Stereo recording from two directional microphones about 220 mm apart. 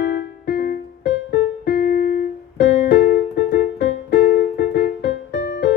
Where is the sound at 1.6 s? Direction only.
40° left (ahead or behind).